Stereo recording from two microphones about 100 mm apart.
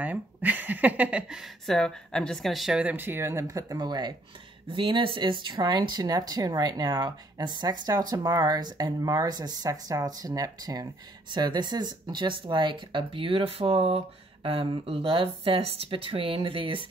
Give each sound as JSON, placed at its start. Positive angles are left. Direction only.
{"t": 0.0, "sound": "speech", "side_deg": -15}
{"t": 1.7, "sound": "a woman's voice", "side_deg": 5}
{"t": 2.8, "sound": "speech", "side_deg": -20}
{"t": 4.7, "sound": "speech", "side_deg": -55}